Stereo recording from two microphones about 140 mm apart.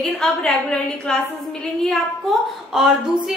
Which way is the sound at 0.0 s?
5° left (ahead or behind).